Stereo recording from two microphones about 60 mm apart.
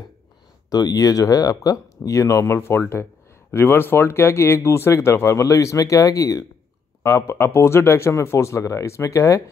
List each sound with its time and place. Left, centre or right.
0.7 s speech: left
7.0 s speech: left